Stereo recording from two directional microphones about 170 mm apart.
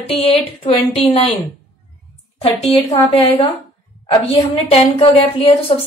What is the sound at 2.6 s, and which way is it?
Speech, 35° left (ahead or behind).